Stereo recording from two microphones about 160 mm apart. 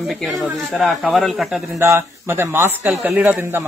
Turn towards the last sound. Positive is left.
turn(degrees=-15)  # may be behind; listen again after turning